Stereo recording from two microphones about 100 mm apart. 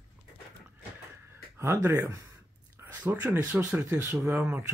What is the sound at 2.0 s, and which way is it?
Speech, 35° right (ahead or behind).